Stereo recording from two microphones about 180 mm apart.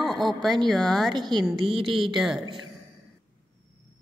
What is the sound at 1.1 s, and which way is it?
A woman's voice, 25° right (ahead or behind).